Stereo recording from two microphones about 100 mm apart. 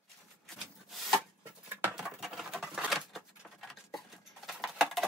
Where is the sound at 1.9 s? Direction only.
5° right (ahead or behind).